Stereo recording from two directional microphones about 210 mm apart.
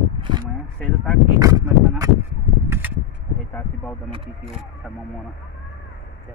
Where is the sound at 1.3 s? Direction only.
15° right (ahead or behind).